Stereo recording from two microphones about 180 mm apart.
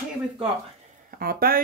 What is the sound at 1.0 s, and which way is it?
Speech, 55° right (ahead or behind).